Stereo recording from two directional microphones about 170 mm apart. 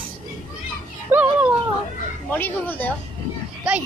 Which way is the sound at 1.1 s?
10° right (ahead or behind).